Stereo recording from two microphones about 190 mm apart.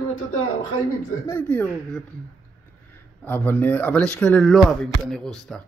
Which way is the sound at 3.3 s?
10° left (ahead or behind).